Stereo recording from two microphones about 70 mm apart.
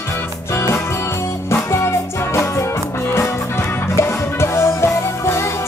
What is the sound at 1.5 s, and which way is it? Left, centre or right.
Music, left.